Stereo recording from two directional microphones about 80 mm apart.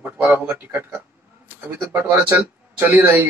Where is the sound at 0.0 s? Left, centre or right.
Right.